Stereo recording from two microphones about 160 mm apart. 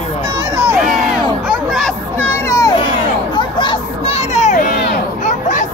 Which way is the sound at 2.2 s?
15° left (ahead or behind).